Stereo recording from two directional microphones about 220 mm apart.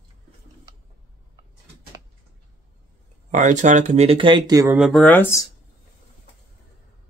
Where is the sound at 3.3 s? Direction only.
35° right (ahead or behind); by 4.7 s 15° right (ahead or behind).